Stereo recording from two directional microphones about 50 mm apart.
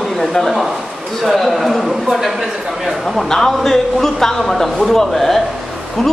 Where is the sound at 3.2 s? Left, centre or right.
Centre.